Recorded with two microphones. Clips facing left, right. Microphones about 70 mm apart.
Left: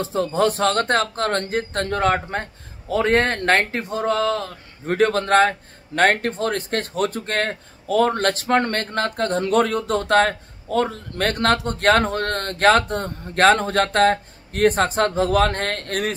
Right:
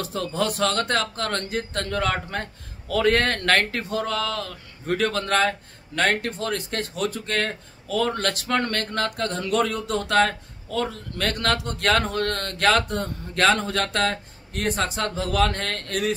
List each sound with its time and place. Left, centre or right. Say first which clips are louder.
0.0 s speech: left 6 dB; left